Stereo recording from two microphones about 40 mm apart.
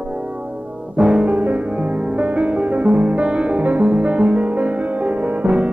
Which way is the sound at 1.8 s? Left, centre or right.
Right.